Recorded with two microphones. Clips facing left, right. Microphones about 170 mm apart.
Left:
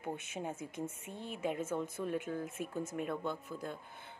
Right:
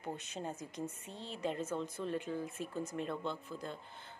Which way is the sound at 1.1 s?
50° left (ahead or behind).